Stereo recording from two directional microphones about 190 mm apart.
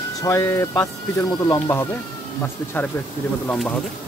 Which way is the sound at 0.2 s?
15° left (ahead or behind).